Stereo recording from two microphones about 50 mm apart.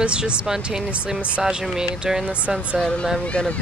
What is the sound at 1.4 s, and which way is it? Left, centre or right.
Speech, centre.